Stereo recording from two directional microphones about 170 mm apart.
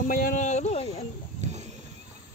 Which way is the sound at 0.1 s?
55° left (ahead or behind).